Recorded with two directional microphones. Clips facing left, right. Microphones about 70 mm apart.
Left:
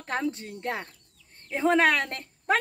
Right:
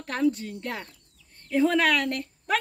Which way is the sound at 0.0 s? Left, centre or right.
Left.